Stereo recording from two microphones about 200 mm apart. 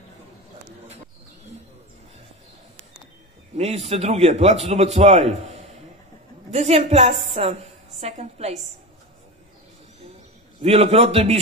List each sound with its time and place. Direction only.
3.5 s a man's voice: 35° right (ahead or behind)
6.5 s a man's voice: 35° right (ahead or behind)
10.6 s a man's voice: 30° right (ahead or behind)